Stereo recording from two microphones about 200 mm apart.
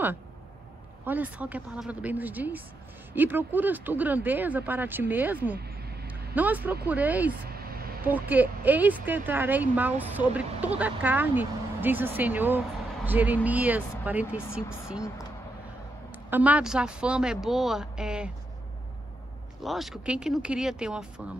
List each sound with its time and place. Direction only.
1.0 s speech: 10° right (ahead or behind)
5.6 s vehicle: 55° right (ahead or behind)
6.0 s speech: 10° right (ahead or behind)
7.5 s a sound: 50° right (ahead or behind)
8.0 s speech: 10° right (ahead or behind)
16.3 s speech: 10° right (ahead or behind)
19.6 s speech: centre (ahead or behind)